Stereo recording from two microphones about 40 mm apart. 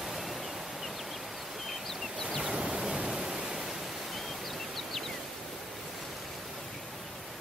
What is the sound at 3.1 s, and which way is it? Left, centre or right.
Pink noise, centre.